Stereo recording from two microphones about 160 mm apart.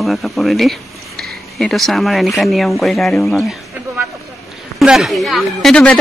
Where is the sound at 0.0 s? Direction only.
Centre (ahead or behind).